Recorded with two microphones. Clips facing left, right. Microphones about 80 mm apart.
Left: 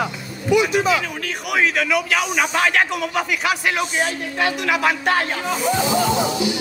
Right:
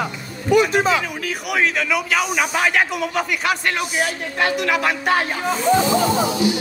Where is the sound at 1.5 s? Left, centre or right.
Centre.